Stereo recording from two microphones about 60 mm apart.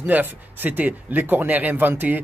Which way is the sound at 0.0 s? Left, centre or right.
Right.